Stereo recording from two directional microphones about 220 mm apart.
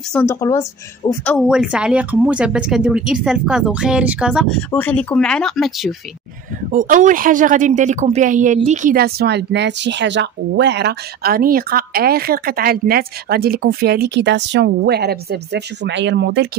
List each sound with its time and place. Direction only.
0.1 s a woman's voice: 10° left (ahead or behind)
1.5 s speech: 5° right (ahead or behind)
6.7 s speech: 35° right (ahead or behind)